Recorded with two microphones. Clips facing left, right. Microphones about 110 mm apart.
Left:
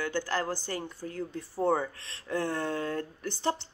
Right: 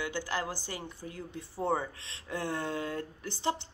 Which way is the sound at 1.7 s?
20° right (ahead or behind).